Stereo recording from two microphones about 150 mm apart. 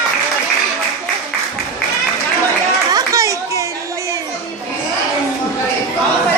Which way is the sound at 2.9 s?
20° right (ahead or behind).